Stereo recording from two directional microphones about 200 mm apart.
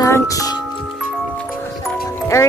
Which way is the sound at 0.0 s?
15° left (ahead or behind).